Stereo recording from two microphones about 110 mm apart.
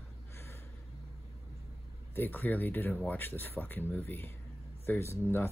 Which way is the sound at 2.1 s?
20° left (ahead or behind).